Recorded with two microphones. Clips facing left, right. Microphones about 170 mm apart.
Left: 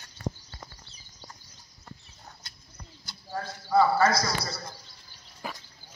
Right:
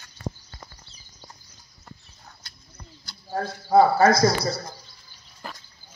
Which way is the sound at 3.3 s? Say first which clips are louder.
Right 6 dB; 40° right (ahead or behind).